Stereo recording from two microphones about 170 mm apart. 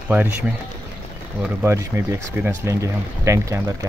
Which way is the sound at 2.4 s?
15° right (ahead or behind).